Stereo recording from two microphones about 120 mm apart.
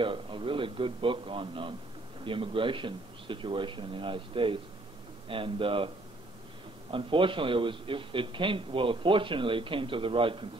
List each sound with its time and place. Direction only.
0.0 s a man's voice: 45° right (ahead or behind)
6.9 s a man's voice: 45° right (ahead or behind)